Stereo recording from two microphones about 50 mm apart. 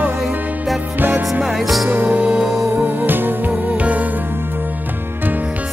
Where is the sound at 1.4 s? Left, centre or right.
Centre.